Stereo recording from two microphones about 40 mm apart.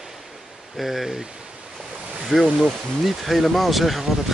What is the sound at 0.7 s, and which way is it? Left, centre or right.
Speech, centre.